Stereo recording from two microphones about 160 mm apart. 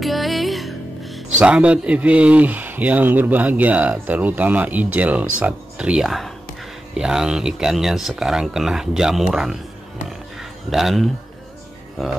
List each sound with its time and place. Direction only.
0.0 s music: centre (ahead or behind)
1.4 s speech: 5° right (ahead or behind)
10.7 s speech: centre (ahead or behind)